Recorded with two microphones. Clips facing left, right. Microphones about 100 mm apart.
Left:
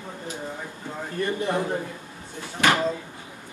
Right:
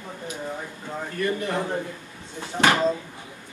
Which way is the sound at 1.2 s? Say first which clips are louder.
Left 1 dB; 20° left (ahead or behind).